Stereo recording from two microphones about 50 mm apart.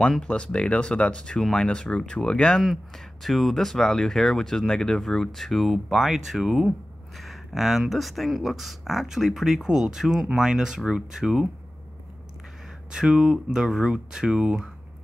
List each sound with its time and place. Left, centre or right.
0.0 s speech: centre
2.6 s speech: centre
12.9 s speech: centre